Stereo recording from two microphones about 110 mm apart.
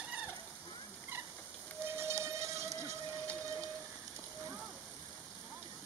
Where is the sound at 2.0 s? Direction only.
25° right (ahead or behind).